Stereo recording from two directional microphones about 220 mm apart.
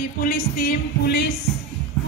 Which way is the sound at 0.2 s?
45° left (ahead or behind).